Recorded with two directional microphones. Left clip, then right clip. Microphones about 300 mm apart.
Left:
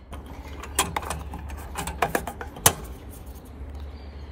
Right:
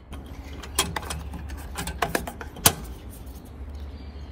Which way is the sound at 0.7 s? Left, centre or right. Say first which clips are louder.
Left 1 dB; centre.